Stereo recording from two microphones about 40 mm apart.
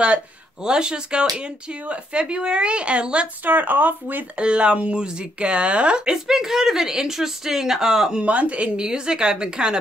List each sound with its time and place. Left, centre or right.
0.0 s speech: right
3.4 s speech: right
4.4 s speech: right
6.2 s speech: centre
8.2 s speech: right
8.7 s speech: right